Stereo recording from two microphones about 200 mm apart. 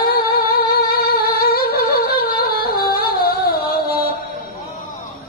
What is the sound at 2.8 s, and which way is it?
Music, 50° left (ahead or behind).